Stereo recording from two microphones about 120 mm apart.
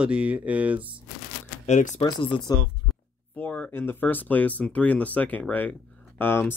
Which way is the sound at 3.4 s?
10° left (ahead or behind).